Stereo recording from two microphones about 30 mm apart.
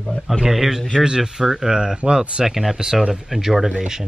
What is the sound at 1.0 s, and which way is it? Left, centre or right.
Speech, right.